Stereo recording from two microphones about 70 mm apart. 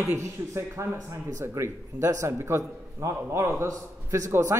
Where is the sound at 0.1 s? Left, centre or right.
Right.